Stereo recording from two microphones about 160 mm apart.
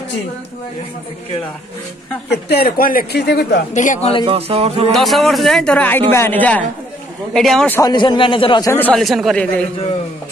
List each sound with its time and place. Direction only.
2.3 s speech: 85° left
3.7 s a man's voice: 50° left (ahead or behind)
4.2 s speech: 35° right (ahead or behind)
4.9 s speech: centre (ahead or behind)
7.8 s a man's voice: 30° left (ahead or behind)
8.7 s speech: 10° left (ahead or behind)
9.0 s speech: centre (ahead or behind)